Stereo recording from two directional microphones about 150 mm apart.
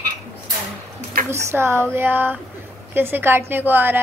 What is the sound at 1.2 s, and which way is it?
A woman's voice, 15° right (ahead or behind).